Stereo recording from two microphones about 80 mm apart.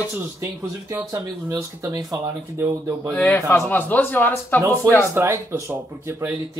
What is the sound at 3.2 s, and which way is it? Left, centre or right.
Speech, left.